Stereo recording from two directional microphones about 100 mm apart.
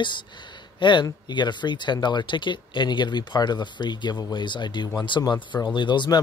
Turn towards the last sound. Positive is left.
turn(degrees=50)  # may be behind; listen again after turning